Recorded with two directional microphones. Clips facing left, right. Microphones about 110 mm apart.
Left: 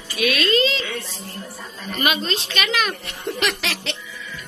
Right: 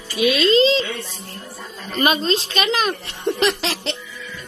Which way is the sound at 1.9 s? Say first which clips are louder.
Right 4 dB; 35° right (ahead or behind).